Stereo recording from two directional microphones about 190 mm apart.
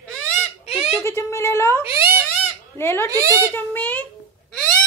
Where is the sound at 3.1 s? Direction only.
15° right (ahead or behind).